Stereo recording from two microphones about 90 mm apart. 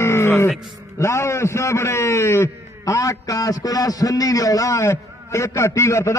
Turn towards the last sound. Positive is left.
turn(degrees=30)  # may be behind; listen again after turning